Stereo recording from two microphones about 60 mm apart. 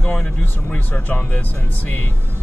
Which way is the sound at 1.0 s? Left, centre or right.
Left.